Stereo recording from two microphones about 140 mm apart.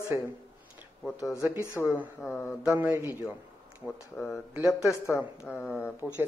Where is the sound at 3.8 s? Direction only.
5° left (ahead or behind).